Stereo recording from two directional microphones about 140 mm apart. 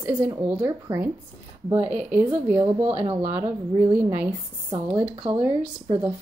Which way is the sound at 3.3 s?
10° right (ahead or behind).